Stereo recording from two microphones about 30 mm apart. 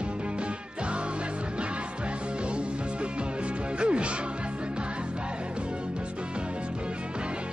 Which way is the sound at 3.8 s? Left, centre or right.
Right.